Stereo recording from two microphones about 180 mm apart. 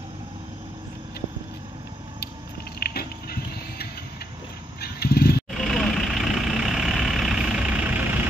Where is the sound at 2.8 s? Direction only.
60° left (ahead or behind).